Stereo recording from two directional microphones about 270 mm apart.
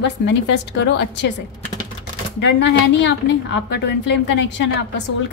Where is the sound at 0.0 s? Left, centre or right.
Left.